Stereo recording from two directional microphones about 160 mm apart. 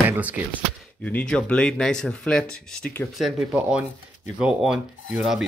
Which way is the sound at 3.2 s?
5° right (ahead or behind).